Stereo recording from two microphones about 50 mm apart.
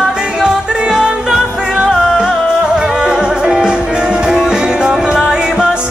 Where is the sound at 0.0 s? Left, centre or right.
Centre.